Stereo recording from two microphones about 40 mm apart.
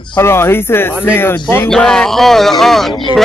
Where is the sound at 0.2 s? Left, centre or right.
Left.